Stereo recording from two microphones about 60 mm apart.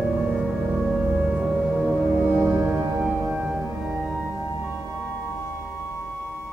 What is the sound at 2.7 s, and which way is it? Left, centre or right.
Music, centre.